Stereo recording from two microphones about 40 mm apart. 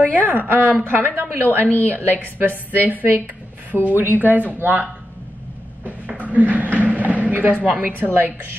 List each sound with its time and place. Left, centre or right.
0.0 s a woman's voice: right
5.9 s a sound: right
7.6 s a woman's voice: right